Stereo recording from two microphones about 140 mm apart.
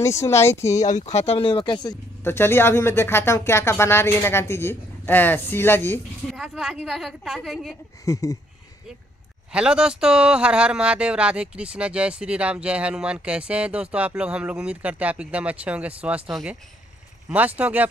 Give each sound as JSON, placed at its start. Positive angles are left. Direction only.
{"t": 0.0, "sound": "speech", "side_deg": 20}
{"t": 0.7, "sound": "speech", "side_deg": 55}
{"t": 2.2, "sound": "speech", "side_deg": 15}
{"t": 6.3, "sound": "a woman's voice", "side_deg": -5}
{"t": 8.0, "sound": "speech", "side_deg": 25}
{"t": 9.5, "sound": "speech", "side_deg": -5}